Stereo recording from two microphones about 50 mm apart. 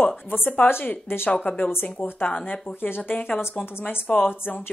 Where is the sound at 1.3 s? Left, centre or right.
Left.